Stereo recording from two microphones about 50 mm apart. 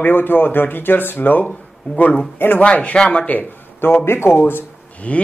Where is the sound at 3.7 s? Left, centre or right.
Left.